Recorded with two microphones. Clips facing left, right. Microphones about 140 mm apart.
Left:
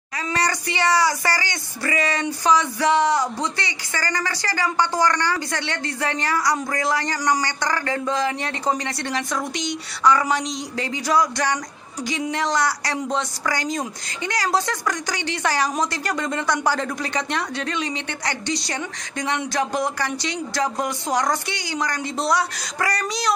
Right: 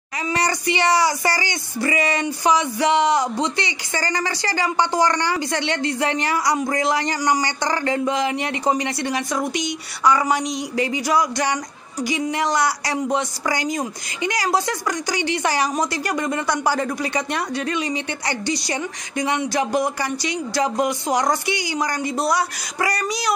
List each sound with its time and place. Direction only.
0.3 s speech: 15° right (ahead or behind)